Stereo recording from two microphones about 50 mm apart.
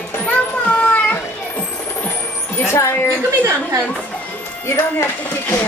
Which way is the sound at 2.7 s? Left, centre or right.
Left.